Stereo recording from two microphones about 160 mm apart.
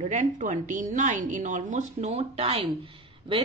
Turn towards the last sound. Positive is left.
turn(degrees=-30)  # may be behind; listen again after turning